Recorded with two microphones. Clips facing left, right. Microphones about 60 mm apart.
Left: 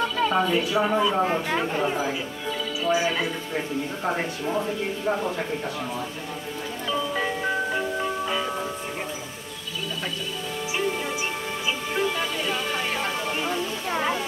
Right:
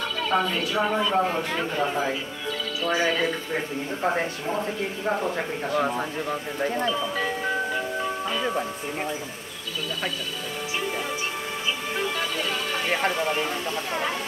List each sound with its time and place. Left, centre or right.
0.3 s speech: centre
2.8 s speech: centre
6.9 s music: centre
11.9 s speech: centre